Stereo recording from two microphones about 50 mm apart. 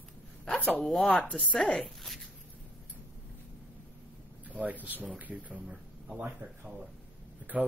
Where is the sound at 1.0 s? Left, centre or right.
Left.